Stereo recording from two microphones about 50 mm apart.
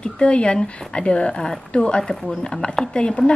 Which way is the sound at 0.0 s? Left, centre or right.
Left.